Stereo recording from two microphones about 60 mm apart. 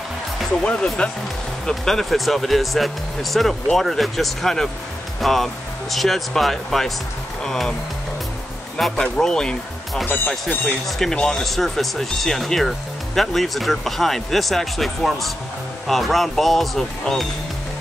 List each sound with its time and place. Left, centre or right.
0.7 s speech: centre
8.7 s speech: centre
10.0 s speech: left
10.6 s speech: centre